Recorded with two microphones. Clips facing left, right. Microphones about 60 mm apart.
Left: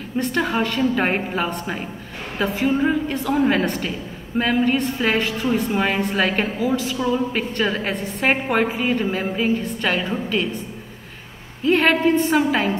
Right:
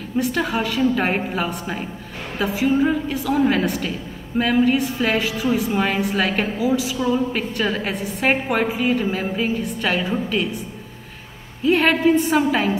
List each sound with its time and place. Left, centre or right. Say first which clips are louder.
0.2 s a woman's voice: even; centre
6.6 s a woman's voice: right 2 dB; centre
7.6 s a woman's voice: even; centre
11.6 s a woman's voice: even; centre